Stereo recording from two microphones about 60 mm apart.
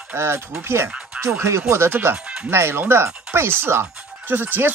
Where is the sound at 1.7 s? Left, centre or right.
Right.